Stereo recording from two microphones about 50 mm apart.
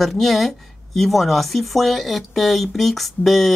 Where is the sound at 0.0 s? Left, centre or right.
Centre.